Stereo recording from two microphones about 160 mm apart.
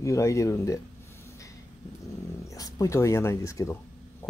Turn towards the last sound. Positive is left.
turn(degrees=20)  # may be behind; listen again after turning